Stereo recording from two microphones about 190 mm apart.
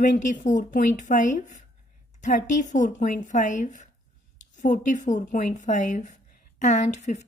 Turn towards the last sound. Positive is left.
turn(degrees=40)  # may be behind; listen again after turning